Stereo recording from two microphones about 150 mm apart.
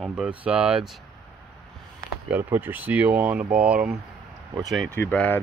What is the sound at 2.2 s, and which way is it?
Speech, 10° right (ahead or behind).